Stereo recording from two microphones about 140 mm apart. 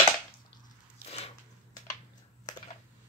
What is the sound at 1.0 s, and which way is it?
Biting, 50° left (ahead or behind).